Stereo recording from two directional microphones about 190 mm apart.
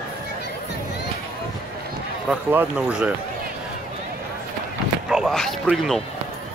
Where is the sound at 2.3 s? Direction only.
5° right (ahead or behind).